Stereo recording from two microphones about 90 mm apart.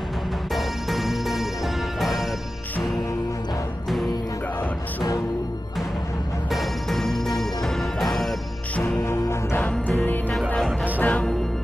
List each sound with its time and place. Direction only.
0.6 s music: centre (ahead or behind)
6.5 s music: centre (ahead or behind)
8.7 s music: 20° left (ahead or behind)